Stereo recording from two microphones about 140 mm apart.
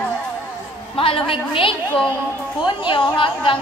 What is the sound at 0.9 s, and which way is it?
A woman's voice, 40° left (ahead or behind).